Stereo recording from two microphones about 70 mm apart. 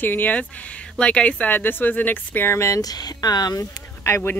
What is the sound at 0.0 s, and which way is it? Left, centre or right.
Speech, left.